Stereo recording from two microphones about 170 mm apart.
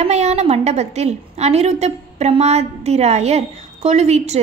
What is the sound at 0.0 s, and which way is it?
A woman's voice, 40° right (ahead or behind).